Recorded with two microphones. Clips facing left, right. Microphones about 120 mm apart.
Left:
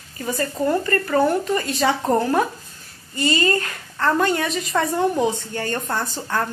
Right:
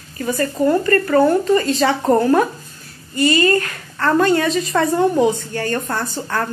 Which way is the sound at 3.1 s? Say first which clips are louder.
Right 5 dB; 25° left (ahead or behind).